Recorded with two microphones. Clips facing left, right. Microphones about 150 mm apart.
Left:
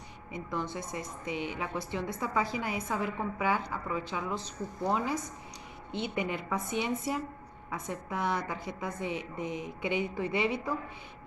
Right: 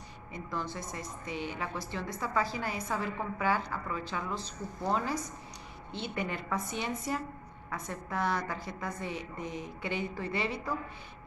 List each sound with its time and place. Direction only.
0.3 s a woman's voice: 20° left (ahead or behind)